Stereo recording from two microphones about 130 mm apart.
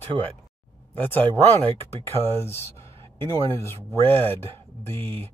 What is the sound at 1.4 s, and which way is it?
Speech, 55° right (ahead or behind).